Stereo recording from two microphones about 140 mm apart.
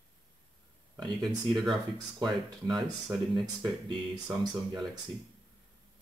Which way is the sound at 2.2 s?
30° right (ahead or behind).